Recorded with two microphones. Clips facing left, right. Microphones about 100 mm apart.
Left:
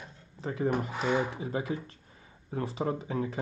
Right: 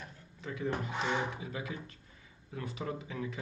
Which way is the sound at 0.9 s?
10° left (ahead or behind).